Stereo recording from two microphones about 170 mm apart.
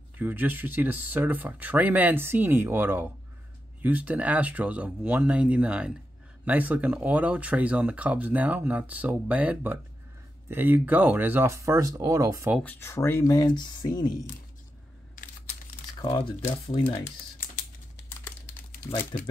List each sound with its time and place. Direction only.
0.2 s speech: 10° right (ahead or behind)
12.6 s speech: 15° left (ahead or behind)
16.0 s speech: 30° left (ahead or behind)